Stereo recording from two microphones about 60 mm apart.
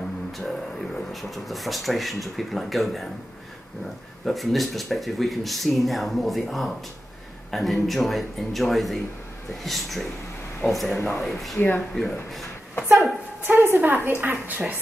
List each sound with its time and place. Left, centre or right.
0.4 s speech: centre
4.2 s speech: centre
12.8 s speech: centre
13.5 s a woman's voice: right